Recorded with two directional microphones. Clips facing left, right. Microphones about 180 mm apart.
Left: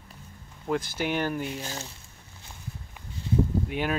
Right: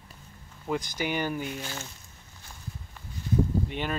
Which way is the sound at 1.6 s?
40° left (ahead or behind).